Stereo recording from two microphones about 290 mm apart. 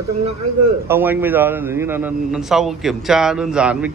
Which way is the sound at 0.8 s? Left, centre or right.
Centre.